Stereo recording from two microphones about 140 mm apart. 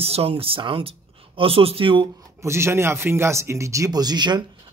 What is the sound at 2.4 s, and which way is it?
Speech, 20° right (ahead or behind).